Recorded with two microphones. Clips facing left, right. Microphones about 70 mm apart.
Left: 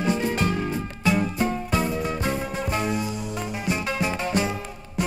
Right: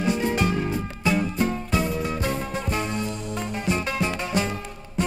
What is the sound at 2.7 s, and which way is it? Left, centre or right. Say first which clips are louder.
Music: left 2 dB; centre.